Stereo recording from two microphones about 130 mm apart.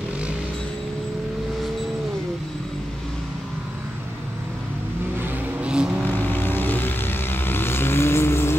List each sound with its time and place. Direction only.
5.2 s vehicle: 10° right (ahead or behind)
6.0 s vehicle: 15° left (ahead or behind)